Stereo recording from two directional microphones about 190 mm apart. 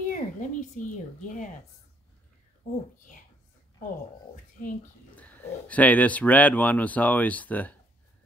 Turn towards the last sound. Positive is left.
turn(degrees=10)  # may be behind; listen again after turning